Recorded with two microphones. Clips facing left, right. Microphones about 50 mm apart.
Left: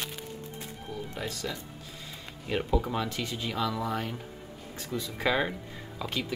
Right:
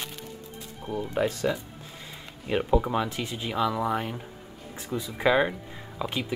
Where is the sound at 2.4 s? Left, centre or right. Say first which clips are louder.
Right 4 dB; centre.